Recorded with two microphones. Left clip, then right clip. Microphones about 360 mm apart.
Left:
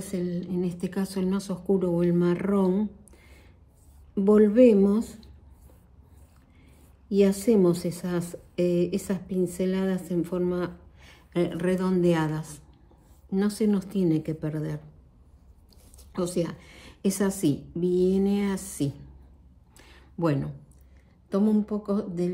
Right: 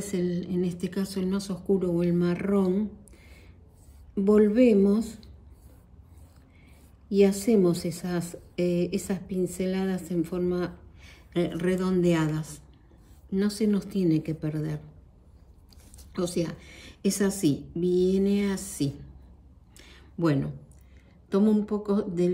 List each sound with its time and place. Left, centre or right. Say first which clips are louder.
0.0 s a woman's voice: right 2 dB; centre
7.1 s a woman's voice: even; centre
16.1 s a woman's voice: left 1 dB; centre
19.8 s a sound: even; centre
21.3 s speech: right 1 dB; centre